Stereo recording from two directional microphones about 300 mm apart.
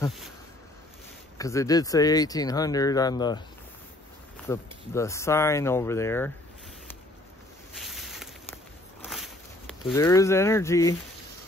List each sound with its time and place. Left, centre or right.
1.4 s speech: centre
4.5 s speech: centre
7.7 s a sound: centre